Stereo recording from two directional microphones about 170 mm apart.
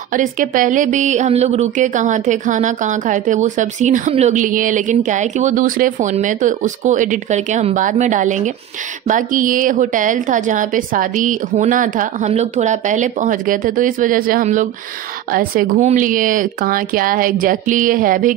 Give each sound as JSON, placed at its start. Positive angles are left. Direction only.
{"t": 0.1, "sound": "a woman's voice", "side_deg": -50}